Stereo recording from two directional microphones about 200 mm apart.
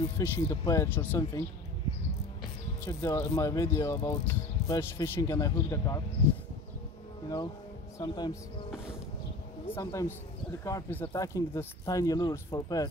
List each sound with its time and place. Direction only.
0.2 s speech: 15° left (ahead or behind)
2.8 s speech: 15° left (ahead or behind)
8.0 s speech: 20° left (ahead or behind)
9.7 s speech: 15° left (ahead or behind)